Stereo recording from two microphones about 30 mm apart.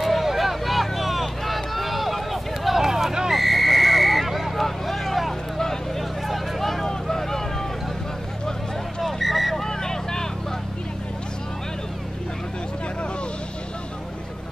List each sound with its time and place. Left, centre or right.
0.0 s vehicle: centre
2.8 s a sound: centre
3.3 s a sound: centre
4.6 s vehicle: centre
7.1 s vehicle: centre
9.0 s vehicle: centre
9.6 s vehicle: centre